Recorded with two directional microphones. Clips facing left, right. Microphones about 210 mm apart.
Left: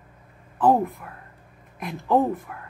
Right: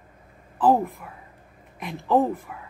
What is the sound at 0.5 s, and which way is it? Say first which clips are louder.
A woman's voice: even; centre (ahead or behind).